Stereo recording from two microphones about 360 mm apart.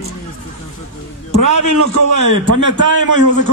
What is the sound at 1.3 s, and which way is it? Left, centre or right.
A man's voice, right.